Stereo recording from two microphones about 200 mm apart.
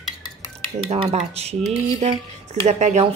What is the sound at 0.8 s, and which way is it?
Speech, 30° right (ahead or behind).